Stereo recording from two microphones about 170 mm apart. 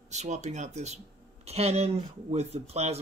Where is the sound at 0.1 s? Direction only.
40° right (ahead or behind).